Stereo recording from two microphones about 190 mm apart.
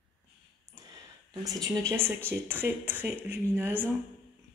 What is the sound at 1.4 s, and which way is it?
Speech, 20° right (ahead or behind).